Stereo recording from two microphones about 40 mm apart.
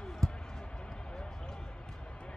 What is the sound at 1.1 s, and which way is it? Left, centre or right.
Basketball bounce, centre.